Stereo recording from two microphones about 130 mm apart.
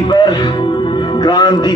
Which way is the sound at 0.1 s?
35° left (ahead or behind).